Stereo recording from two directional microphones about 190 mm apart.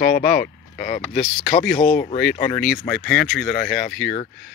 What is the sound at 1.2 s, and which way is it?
Speech, centre (ahead or behind).